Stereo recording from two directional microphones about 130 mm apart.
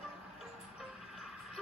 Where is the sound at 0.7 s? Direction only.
5° right (ahead or behind).